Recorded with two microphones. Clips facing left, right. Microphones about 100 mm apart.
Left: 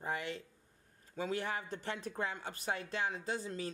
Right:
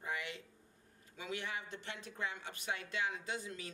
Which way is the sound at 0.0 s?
35° left (ahead or behind).